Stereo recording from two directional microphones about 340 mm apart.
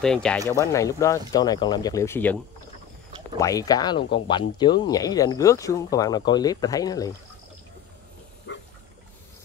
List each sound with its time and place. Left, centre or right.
0.0 s speech: centre
3.3 s speech: centre
8.5 s a sound: left